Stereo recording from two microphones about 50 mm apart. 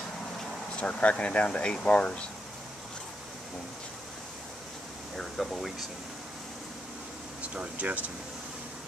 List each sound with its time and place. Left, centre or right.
0.7 s speech: left
5.1 s speech: centre
7.4 s speech: right